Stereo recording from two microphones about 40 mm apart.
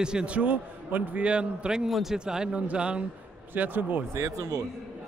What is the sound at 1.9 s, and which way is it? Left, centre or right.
Speech, centre.